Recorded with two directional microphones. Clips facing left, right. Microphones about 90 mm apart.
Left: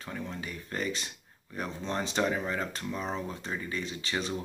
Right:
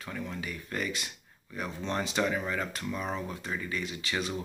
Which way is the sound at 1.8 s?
20° left (ahead or behind).